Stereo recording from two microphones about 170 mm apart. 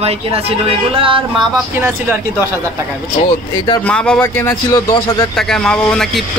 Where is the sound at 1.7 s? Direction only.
15° right (ahead or behind).